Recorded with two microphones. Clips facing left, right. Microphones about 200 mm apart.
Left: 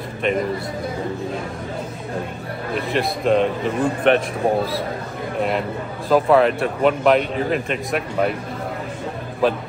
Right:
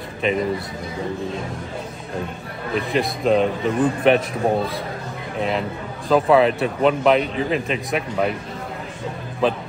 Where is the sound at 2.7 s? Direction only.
Centre (ahead or behind).